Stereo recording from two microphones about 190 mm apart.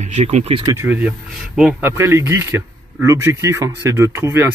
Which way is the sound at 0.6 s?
15° right (ahead or behind).